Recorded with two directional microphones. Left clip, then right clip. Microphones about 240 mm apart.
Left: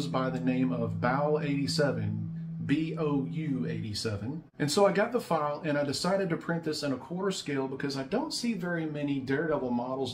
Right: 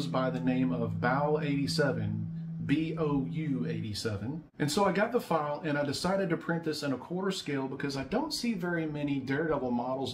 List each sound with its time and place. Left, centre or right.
0.1 s speech: centre
4.6 s speech: centre